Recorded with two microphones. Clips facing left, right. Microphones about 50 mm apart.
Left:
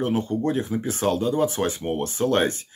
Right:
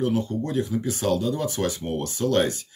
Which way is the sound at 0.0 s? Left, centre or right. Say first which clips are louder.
Left 1 dB; left.